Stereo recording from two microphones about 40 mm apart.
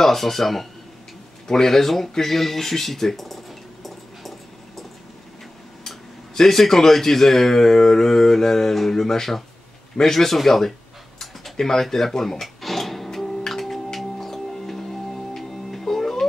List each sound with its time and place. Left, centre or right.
0.0 s speech: centre
5.9 s speech: centre
11.1 s tick-tock: centre
13.5 s music: centre